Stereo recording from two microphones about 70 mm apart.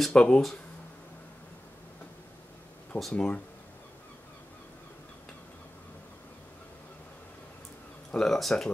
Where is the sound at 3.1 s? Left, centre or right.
Centre.